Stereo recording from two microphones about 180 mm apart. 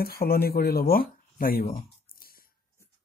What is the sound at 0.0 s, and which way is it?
Speech, 55° left (ahead or behind).